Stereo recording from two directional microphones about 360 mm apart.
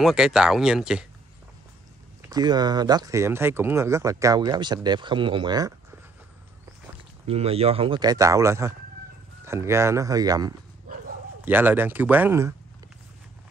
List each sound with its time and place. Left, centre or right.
0.0 s speech: centre
2.2 s speech: centre
7.2 s speech: centre
10.9 s dog: right
11.4 s speech: centre